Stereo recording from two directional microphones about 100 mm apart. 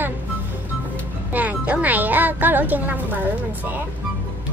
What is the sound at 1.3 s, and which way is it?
A woman's voice, 15° right (ahead or behind).